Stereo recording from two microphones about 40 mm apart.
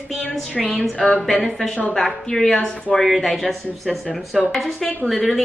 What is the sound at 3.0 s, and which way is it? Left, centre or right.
A woman's voice, centre.